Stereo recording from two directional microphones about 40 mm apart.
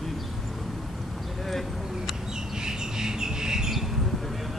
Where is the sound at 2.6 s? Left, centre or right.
Centre.